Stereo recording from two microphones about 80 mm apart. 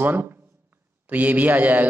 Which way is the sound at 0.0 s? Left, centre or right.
Right.